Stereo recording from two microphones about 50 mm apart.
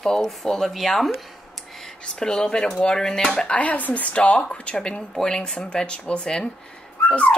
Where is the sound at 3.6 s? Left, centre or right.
Left.